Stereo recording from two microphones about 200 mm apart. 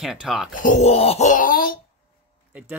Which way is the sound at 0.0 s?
Centre (ahead or behind).